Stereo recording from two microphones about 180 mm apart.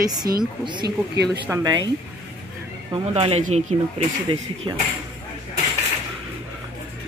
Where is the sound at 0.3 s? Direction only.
55° right (ahead or behind).